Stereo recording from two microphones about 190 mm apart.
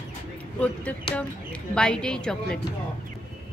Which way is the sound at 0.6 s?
5° left (ahead or behind).